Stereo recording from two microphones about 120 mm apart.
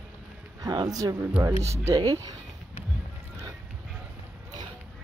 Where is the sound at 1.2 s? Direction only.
15° right (ahead or behind).